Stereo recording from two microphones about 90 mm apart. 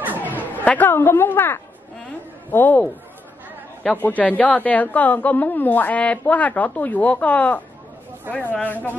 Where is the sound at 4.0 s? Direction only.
20° left (ahead or behind).